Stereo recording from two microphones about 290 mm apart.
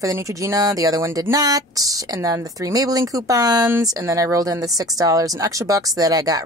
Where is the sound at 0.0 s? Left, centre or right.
Centre.